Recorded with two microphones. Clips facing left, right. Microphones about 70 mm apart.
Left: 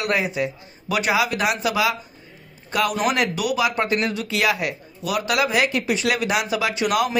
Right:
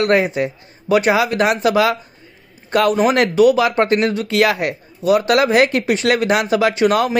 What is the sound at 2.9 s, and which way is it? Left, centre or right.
A man's voice, right.